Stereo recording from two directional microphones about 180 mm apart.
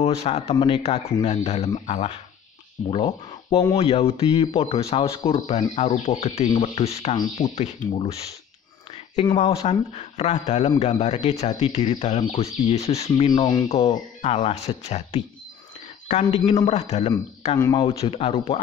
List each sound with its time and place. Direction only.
0.0 s speech: 35° left (ahead or behind)
9.1 s speech: 25° left (ahead or behind)
9.6 s speech: 35° left (ahead or behind)
13.3 s speech: 25° left (ahead or behind)
13.7 s speech: 35° left (ahead or behind)